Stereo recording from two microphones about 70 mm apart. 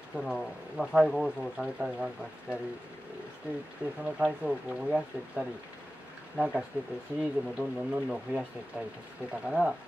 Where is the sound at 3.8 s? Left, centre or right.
Centre.